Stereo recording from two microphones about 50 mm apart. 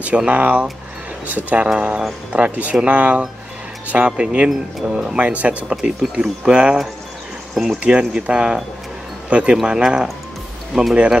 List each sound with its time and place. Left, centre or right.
0.3 s speech: right
5.7 s speech: centre
7.5 s speech: centre
8.0 s speech: centre
10.7 s speech: centre